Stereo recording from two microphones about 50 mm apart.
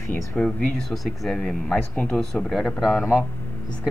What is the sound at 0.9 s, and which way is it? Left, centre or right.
Speech, centre.